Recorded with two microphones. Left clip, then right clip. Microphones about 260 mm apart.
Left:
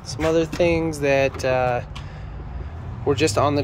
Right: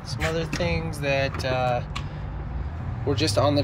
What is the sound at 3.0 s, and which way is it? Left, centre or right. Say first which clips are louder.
Speech: left 3 dB; centre.